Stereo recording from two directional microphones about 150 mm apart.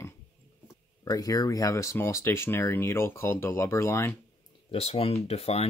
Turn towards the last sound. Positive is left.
turn(degrees=45)  # may be behind; listen again after turning